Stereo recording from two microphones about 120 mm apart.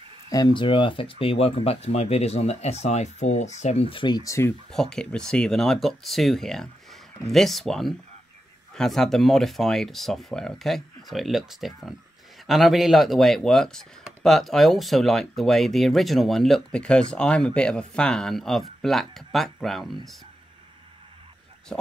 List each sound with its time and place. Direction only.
0.5 s speech: 45° left (ahead or behind)
4.2 s speech: 25° left (ahead or behind)
4.6 s speech: 5° left (ahead or behind)